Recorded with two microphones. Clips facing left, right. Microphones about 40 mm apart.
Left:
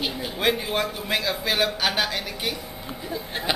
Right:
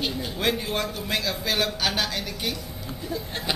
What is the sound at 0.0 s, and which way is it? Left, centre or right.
Speech, centre.